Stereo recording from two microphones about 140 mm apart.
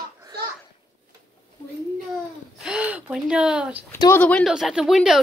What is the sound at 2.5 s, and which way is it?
Gasp, 5° right (ahead or behind).